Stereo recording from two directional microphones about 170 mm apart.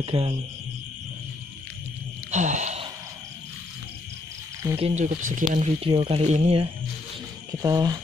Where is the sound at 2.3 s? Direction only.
45° right (ahead or behind).